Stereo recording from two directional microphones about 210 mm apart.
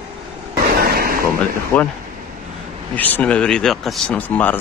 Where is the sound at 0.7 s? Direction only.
45° right (ahead or behind).